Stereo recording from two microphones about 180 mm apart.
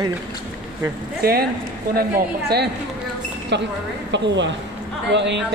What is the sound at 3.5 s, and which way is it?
A woman's voice, 75° right (ahead or behind).